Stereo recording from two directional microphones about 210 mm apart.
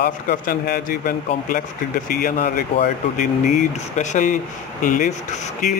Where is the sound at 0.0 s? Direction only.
50° left (ahead or behind).